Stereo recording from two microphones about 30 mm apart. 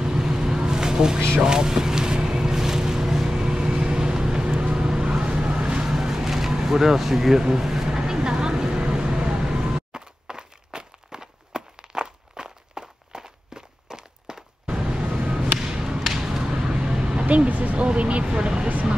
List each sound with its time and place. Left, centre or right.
0.0 s vehicle: centre
1.4 s boat: right
4.7 s vehicle: right
5.9 s vehicle: centre
6.6 s speech: centre
7.9 s vehicle: right
12.0 s walk: right
13.8 s a sound: right
15.7 s thump: right
17.0 s a sound: right
17.3 s a sound: right
17.8 s vehicle: right
18.2 s speech: right